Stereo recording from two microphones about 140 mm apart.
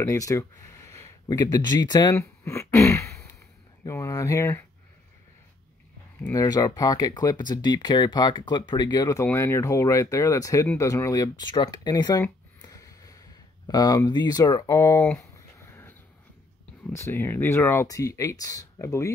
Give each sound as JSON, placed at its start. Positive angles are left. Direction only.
{"t": 0.0, "sound": "speech", "side_deg": 25}
{"t": 6.3, "sound": "speech", "side_deg": 25}
{"t": 9.2, "sound": "speech", "side_deg": 20}